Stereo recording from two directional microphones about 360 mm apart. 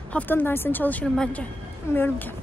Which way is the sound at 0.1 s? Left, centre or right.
Centre.